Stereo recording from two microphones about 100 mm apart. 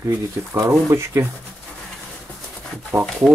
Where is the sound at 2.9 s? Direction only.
35° right (ahead or behind).